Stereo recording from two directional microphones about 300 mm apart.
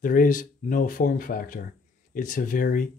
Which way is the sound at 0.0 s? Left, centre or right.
Left.